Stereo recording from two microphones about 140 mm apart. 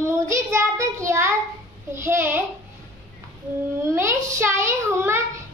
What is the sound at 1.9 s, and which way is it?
Speech, 20° right (ahead or behind).